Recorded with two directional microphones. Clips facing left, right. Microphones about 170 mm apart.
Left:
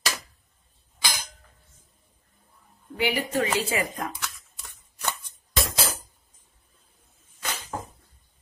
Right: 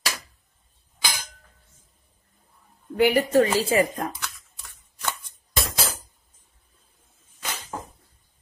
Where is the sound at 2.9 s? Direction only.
45° right (ahead or behind).